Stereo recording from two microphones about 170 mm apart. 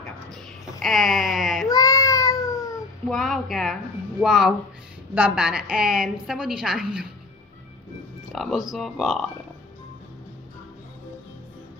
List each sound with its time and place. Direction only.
0.8 s bleat: centre (ahead or behind)
1.7 s a sound: 20° left (ahead or behind)
3.1 s a woman's voice: centre (ahead or behind)
8.3 s a woman's voice: centre (ahead or behind)